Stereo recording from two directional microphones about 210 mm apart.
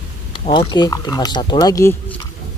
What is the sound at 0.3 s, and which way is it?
Speech, 20° left (ahead or behind).